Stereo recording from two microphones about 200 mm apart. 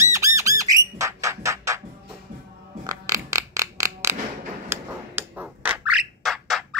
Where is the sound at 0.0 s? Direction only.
15° right (ahead or behind).